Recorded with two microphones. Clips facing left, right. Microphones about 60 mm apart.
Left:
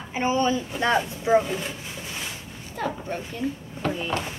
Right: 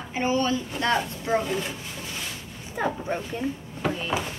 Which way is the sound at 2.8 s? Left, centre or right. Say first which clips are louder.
Right 2 dB; centre.